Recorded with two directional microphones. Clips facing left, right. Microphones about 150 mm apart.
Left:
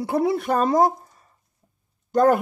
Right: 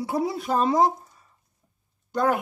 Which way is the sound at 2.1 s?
45° left (ahead or behind).